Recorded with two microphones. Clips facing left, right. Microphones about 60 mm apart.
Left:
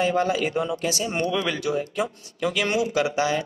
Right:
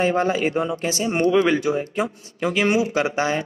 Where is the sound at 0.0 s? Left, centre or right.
Right.